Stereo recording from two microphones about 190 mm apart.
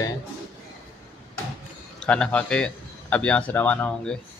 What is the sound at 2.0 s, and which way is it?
A man's voice, 5° left (ahead or behind).